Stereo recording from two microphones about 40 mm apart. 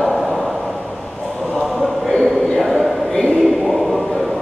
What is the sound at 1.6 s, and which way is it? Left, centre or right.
Chant, centre.